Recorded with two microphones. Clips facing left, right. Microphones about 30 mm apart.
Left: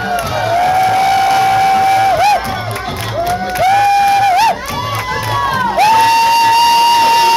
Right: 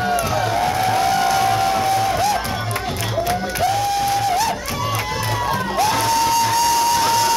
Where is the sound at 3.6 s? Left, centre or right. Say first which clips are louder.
Left 10 dB; left.